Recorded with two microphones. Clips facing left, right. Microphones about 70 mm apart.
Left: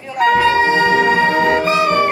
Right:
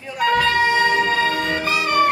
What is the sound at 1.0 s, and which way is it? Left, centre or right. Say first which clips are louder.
Music: left 6 dB; left.